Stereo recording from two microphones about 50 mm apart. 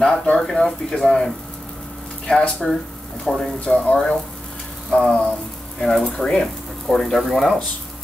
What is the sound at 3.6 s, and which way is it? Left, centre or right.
Speech, left.